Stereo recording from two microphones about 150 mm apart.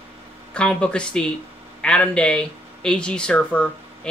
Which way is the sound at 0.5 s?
5° left (ahead or behind).